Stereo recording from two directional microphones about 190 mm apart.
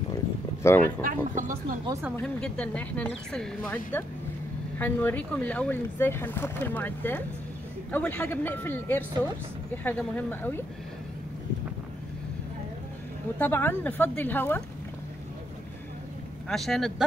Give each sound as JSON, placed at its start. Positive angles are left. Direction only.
{"t": 0.1, "sound": "a sound", "side_deg": 15}
{"t": 1.0, "sound": "speech", "side_deg": -45}
{"t": 1.9, "sound": "speech", "side_deg": -15}
{"t": 2.1, "sound": "speech", "side_deg": 5}
{"t": 13.4, "sound": "speech", "side_deg": 10}
{"t": 16.4, "sound": "speech", "side_deg": 0}